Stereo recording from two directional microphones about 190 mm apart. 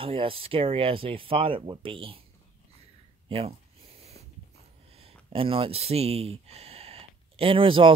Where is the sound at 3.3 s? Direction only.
30° right (ahead or behind).